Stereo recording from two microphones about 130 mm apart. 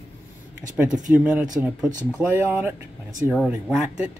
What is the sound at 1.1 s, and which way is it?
Speech, 10° right (ahead or behind).